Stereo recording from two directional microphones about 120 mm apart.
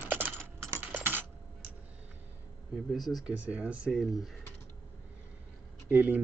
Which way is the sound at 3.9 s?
Centre (ahead or behind).